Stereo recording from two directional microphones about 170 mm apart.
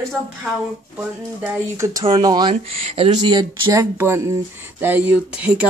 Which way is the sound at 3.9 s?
15° right (ahead or behind).